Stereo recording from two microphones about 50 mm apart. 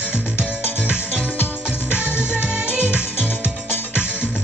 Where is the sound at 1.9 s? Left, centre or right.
Left.